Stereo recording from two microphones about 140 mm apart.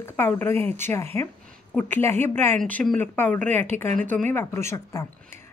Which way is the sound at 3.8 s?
65° right (ahead or behind).